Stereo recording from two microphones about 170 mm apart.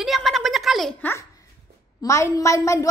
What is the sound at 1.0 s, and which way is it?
A woman's voice, 15° left (ahead or behind).